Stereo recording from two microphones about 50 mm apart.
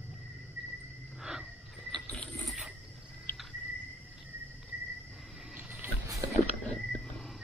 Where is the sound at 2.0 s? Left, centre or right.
Left.